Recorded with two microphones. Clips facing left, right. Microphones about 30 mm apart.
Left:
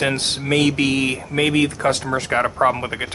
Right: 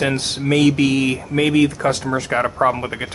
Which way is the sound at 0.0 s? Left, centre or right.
Left.